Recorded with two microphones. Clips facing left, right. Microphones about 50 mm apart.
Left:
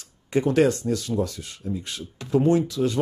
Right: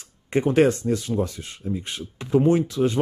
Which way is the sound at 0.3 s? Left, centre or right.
Right.